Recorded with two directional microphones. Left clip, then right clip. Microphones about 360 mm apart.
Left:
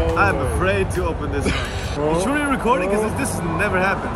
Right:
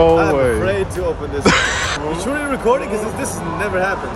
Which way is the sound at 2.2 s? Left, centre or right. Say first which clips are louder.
Even; centre.